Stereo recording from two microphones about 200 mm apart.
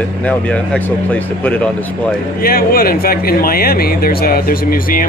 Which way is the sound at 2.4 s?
50° left (ahead or behind).